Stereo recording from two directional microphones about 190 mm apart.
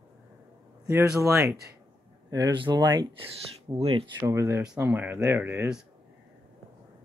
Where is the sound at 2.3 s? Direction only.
25° right (ahead or behind).